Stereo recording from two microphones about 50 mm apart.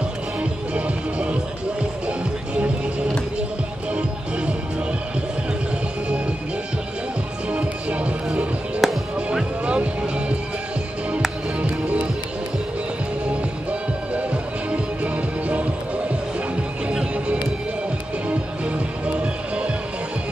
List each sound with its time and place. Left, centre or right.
0.4 s music: right
7.5 s music: right
11.6 s music: right
13.3 s music: right
18.7 s music: right